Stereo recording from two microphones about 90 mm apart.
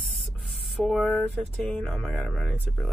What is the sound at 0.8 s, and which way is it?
Speech, 5° left (ahead or behind).